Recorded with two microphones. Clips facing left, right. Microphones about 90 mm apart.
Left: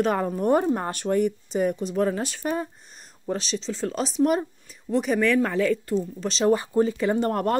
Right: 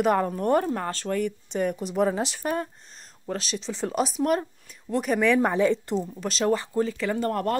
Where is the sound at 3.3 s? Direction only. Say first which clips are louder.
Left 3 dB; centre (ahead or behind).